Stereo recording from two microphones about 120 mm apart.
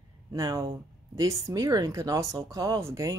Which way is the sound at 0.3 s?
30° right (ahead or behind).